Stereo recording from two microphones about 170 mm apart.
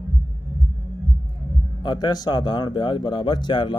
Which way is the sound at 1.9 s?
25° left (ahead or behind).